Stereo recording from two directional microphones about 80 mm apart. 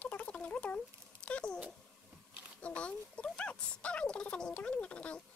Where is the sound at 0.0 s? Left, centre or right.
Centre.